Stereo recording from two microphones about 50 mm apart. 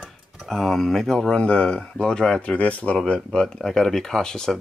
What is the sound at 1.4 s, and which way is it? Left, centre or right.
Speech, left.